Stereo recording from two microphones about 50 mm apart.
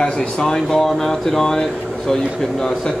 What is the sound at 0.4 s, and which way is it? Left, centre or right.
Speech, centre.